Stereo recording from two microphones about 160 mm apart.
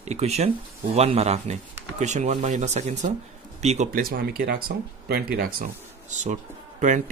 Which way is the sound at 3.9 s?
65° right (ahead or behind).